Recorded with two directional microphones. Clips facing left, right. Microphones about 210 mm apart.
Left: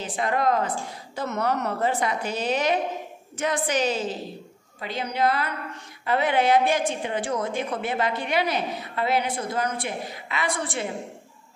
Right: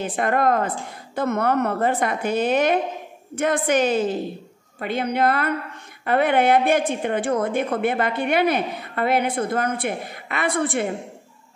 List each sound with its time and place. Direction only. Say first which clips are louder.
0.0 s a woman's voice: right 4 dB; 55° right (ahead or behind)